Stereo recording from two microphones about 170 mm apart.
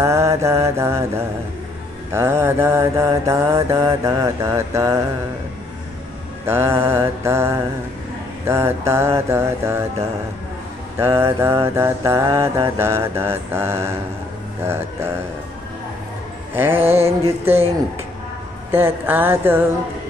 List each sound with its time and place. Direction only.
0.0 s mantra: 15° right (ahead or behind)
6.4 s mantra: 15° right (ahead or behind)
11.0 s mantra: 15° right (ahead or behind)
16.5 s mantra: 10° right (ahead or behind)
18.7 s mantra: 15° right (ahead or behind)